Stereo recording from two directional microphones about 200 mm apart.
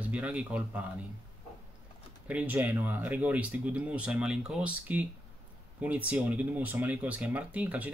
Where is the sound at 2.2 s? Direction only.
10° right (ahead or behind).